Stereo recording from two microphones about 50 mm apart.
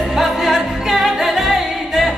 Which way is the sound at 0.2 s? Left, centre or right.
Centre.